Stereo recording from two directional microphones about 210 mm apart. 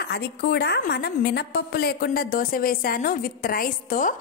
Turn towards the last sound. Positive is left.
turn(degrees=40)  # may be behind; listen again after turning